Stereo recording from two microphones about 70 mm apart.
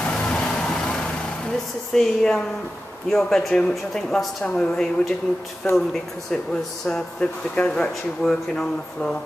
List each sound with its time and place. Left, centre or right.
0.0 s vehicle: centre
2.0 s speech: centre
6.9 s speech: centre